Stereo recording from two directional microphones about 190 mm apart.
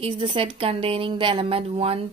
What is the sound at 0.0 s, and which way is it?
Speech, 30° right (ahead or behind).